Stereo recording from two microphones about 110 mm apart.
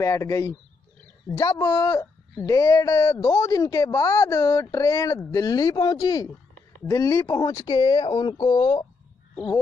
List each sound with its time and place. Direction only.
0.0 s a man's voice: 30° left (ahead or behind); by 8.7 s 55° left (ahead or behind)